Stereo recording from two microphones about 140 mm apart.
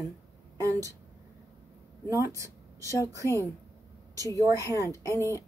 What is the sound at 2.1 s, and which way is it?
A woman's voice, 25° right (ahead or behind).